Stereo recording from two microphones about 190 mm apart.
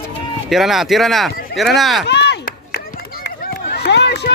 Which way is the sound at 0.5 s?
Centre (ahead or behind).